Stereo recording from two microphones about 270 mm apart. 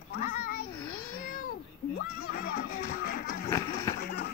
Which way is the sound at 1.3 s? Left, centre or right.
Left.